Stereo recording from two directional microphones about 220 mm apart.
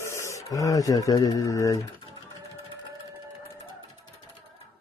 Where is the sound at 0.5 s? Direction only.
15° left (ahead or behind).